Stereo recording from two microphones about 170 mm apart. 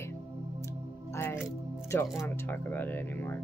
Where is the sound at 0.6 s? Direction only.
15° left (ahead or behind).